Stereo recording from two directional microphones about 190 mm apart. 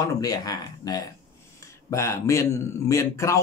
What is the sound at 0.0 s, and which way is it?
Speech, 20° left (ahead or behind).